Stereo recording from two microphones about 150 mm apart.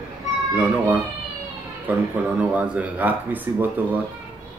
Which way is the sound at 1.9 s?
10° right (ahead or behind).